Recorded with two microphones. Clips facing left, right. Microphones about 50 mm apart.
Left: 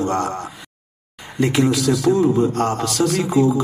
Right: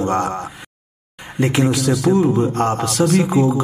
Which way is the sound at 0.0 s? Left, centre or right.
Right.